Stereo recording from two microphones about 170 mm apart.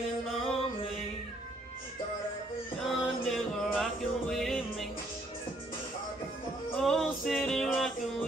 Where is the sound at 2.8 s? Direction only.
Centre (ahead or behind).